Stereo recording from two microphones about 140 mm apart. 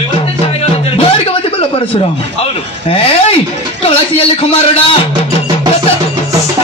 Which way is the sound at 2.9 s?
40° left (ahead or behind).